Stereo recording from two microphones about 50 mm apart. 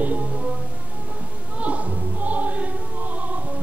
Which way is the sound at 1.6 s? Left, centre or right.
Right.